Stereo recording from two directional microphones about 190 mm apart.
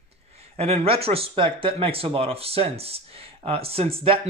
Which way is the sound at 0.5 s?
35° right (ahead or behind).